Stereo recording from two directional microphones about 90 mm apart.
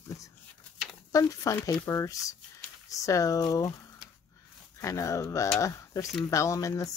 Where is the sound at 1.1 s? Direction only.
40° left (ahead or behind).